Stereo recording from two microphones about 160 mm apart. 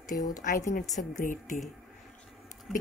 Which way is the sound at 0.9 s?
50° left (ahead or behind).